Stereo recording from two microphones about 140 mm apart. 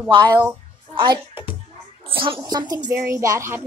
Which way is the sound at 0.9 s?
35° right (ahead or behind).